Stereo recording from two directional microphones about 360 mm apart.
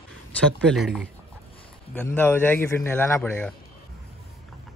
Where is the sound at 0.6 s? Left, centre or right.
Centre.